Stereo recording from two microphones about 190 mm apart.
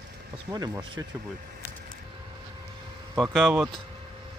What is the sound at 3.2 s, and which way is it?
Speech, centre (ahead or behind).